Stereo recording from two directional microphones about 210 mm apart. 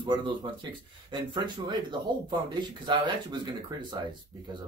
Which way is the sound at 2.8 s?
20° right (ahead or behind).